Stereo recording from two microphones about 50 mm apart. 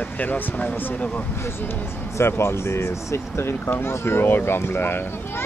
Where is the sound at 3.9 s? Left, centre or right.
Left.